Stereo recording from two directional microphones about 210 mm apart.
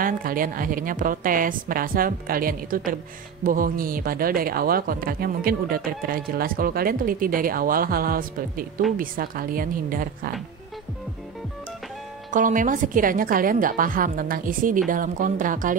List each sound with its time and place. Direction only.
0.0 s a woman's voice: 40° right (ahead or behind)
12.3 s a woman's voice: 40° right (ahead or behind)